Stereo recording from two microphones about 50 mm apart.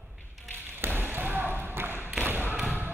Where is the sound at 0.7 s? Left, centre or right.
Right.